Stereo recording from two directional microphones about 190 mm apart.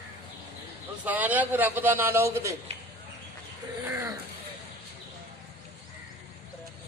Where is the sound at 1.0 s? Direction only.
10° right (ahead or behind).